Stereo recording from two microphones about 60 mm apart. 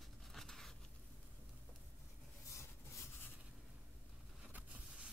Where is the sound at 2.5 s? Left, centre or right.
Left.